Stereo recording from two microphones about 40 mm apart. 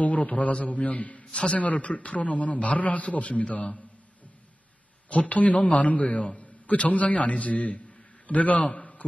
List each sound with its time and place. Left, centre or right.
0.0 s a man's voice: left
1.3 s a man's voice: left
5.1 s a man's voice: left
8.5 s a sound: left